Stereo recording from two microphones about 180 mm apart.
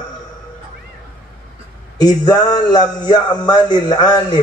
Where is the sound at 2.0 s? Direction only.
20° left (ahead or behind).